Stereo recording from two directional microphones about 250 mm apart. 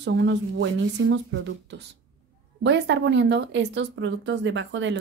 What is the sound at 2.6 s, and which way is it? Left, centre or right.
Speech, right.